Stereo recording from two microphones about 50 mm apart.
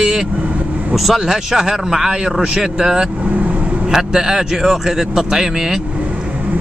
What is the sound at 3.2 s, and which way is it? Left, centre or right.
Vehicle, right.